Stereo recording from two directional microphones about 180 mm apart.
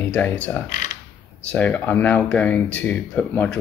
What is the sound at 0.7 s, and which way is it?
Speech, 45° left (ahead or behind).